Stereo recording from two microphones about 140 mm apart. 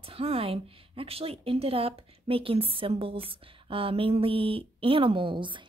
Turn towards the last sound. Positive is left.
turn(degrees=-35)  # may be behind; listen again after turning